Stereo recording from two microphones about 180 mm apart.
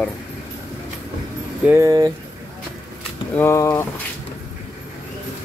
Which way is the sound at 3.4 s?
15° left (ahead or behind).